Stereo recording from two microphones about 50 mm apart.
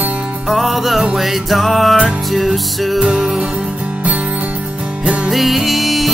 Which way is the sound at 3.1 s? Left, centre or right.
Centre.